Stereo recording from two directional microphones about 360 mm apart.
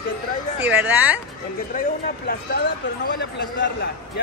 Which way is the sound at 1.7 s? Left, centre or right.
Left.